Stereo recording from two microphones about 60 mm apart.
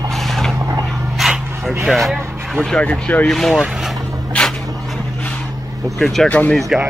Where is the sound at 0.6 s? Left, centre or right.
Right.